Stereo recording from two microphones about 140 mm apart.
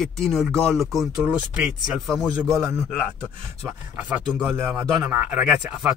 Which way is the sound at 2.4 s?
20° right (ahead or behind).